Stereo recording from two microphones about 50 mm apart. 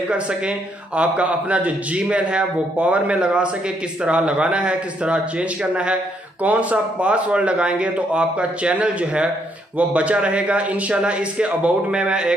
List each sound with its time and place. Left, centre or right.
0.1 s a man's voice: right